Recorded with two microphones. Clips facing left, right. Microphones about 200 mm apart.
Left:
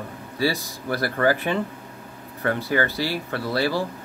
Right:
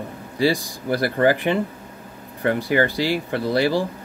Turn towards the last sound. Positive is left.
turn(degrees=-15)  # may be behind; listen again after turning